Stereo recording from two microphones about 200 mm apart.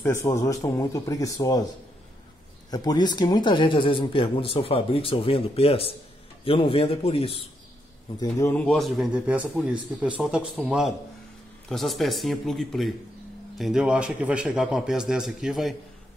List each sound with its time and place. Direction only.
0.0 s speech: 15° left (ahead or behind)
2.7 s speech: 20° left (ahead or behind)
8.2 s speech: 15° left (ahead or behind); by 15.7 s centre (ahead or behind)